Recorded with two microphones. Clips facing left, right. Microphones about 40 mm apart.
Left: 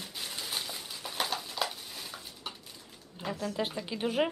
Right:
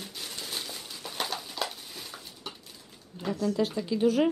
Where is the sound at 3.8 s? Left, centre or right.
Left.